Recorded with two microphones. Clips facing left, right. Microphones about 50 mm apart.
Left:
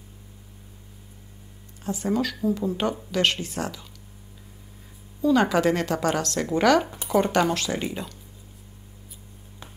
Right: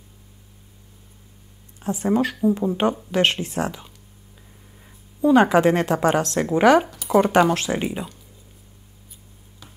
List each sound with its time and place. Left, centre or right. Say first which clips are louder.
1.8 s a woman's voice: right 4 dB; right
5.2 s a woman's voice: right 5 dB; right
9.6 s music: left 2 dB; left